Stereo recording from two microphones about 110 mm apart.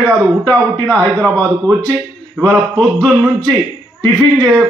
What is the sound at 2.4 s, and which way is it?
Speech, 10° left (ahead or behind).